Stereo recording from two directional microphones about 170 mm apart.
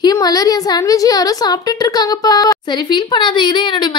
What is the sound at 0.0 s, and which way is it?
A woman's voice, 25° left (ahead or behind).